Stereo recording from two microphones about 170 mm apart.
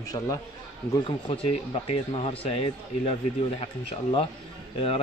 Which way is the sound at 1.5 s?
35° left (ahead or behind).